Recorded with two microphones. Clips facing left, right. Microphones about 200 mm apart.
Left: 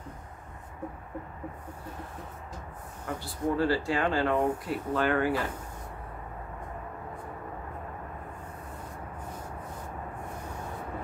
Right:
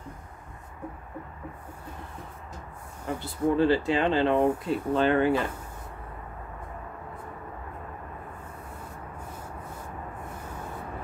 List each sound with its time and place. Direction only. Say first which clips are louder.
3.2 s speech: right 5 dB; 20° right (ahead or behind)